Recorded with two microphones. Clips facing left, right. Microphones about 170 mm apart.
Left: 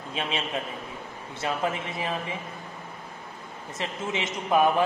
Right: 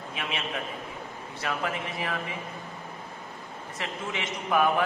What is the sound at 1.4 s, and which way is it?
Speech, 25° left (ahead or behind).